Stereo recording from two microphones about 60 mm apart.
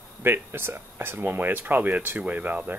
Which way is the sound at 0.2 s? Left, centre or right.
Right.